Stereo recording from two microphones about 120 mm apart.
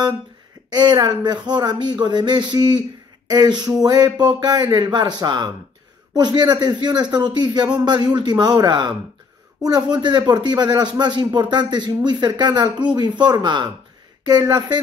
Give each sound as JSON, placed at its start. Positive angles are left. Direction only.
{"t": 0.7, "sound": "a man's voice", "side_deg": -35}